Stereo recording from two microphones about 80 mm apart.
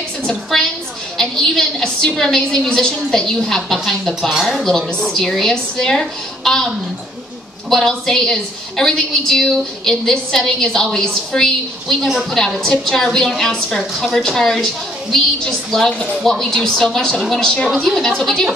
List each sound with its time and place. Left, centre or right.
0.3 s a woman's voice: centre
7.7 s a woman's voice: centre